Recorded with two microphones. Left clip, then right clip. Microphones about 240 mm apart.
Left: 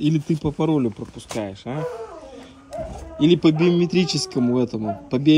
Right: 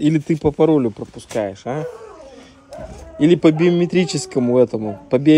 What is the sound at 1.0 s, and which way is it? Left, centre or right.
Speech, right.